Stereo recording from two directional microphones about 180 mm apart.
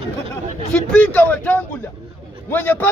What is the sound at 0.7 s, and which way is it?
A man's voice, 5° left (ahead or behind).